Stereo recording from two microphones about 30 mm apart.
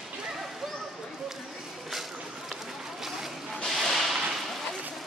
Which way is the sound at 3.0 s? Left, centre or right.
Centre.